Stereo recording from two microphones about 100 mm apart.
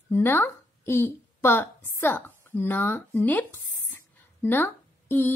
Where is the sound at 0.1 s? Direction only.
20° left (ahead or behind).